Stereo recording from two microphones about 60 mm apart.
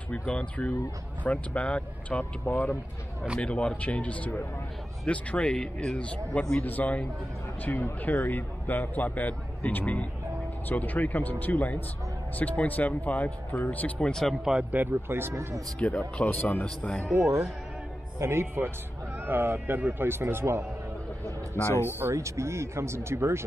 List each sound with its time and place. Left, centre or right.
0.1 s a man's voice: left
3.3 s a man's voice: centre
13.9 s speech: centre
14.4 s speech: centre
14.7 s speech: right
15.0 s speech: right
15.8 s a man's voice: centre
16.3 s a man's voice: left
18.2 s speech: right
21.6 s speech: left
22.1 s speech: right